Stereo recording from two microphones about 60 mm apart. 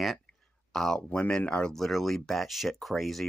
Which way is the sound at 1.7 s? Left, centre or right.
Centre.